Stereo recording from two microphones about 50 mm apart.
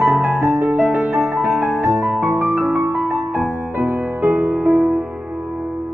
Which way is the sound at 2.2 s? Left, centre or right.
Right.